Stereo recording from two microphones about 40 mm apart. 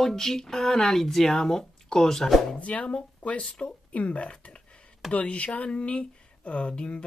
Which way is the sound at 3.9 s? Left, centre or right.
Left.